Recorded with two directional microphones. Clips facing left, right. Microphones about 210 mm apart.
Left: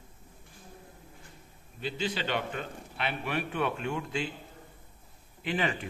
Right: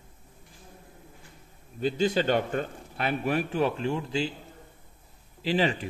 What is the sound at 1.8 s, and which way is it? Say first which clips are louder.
A man's voice: right 8 dB; 45° right (ahead or behind).